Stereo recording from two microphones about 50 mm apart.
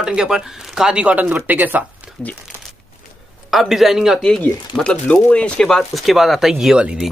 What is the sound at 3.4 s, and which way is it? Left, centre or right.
Speech, centre.